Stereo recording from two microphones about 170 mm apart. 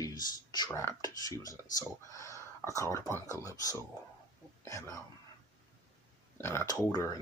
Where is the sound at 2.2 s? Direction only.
20° left (ahead or behind).